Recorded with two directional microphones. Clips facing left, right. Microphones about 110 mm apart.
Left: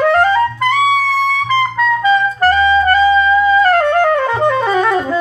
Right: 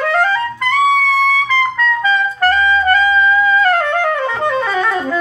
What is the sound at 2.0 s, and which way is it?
Clarinet, 25° left (ahead or behind).